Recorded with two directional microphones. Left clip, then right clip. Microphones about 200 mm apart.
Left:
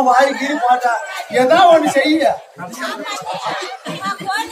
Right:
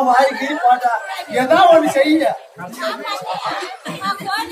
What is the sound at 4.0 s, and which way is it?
Chuckle, 25° right (ahead or behind).